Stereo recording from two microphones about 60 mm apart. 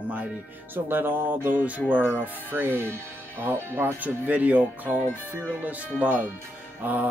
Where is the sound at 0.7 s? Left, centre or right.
Right.